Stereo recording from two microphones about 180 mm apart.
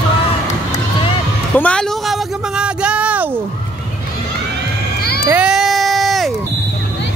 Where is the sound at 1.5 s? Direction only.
5° left (ahead or behind).